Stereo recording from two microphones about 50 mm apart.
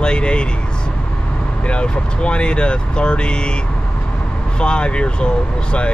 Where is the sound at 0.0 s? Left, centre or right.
Left.